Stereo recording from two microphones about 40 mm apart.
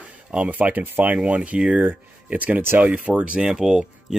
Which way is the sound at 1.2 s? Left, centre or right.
Right.